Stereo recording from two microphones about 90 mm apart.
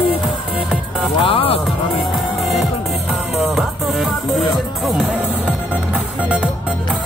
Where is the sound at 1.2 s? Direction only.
90° left.